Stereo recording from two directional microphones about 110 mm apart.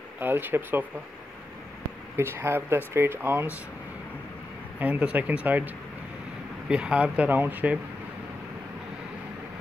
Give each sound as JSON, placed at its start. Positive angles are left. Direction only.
{"t": 0.2, "sound": "speech", "side_deg": -20}
{"t": 2.1, "sound": "speech", "side_deg": -20}
{"t": 4.7, "sound": "speech", "side_deg": -15}
{"t": 6.7, "sound": "speech", "side_deg": -10}